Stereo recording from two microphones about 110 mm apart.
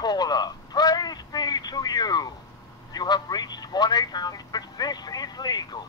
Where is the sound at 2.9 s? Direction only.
35° left (ahead or behind).